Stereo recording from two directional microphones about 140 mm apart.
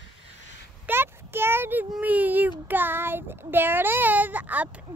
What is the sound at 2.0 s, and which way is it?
A child's voice, 10° right (ahead or behind).